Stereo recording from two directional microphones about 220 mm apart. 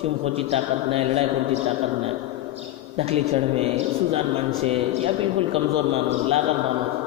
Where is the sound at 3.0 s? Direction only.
25° right (ahead or behind).